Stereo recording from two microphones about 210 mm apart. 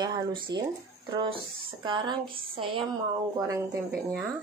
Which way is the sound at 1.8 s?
20° right (ahead or behind).